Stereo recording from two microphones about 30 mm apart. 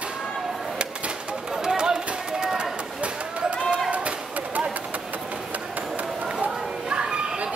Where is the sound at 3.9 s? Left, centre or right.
Right.